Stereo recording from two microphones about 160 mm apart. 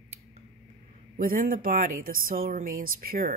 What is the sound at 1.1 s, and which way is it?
Speech, 60° right (ahead or behind).